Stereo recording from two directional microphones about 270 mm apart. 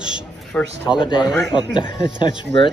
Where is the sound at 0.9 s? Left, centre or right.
Centre.